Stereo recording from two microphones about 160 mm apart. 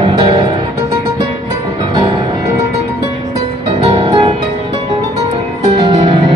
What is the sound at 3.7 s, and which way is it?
Music, 30° right (ahead or behind).